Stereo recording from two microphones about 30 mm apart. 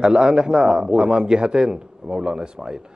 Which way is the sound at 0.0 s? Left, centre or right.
Right.